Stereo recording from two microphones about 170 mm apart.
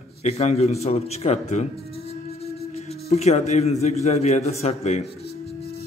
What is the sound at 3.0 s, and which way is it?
A man's voice, 40° left (ahead or behind).